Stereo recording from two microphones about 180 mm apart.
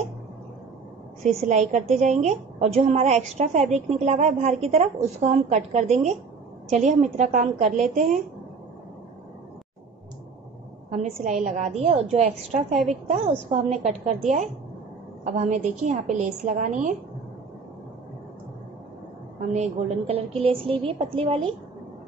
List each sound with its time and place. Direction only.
1.2 s a woman's voice: 40° right (ahead or behind)
10.9 s a woman's voice: 40° right (ahead or behind)
19.5 s a woman's voice: 35° right (ahead or behind)